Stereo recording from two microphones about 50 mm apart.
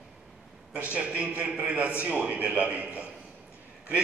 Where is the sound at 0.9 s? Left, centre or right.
Right.